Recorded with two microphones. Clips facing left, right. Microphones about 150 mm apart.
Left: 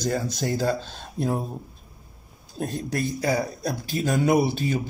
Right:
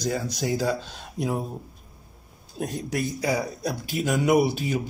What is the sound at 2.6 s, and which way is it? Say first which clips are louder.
Speech: left 1 dB; 15° right (ahead or behind).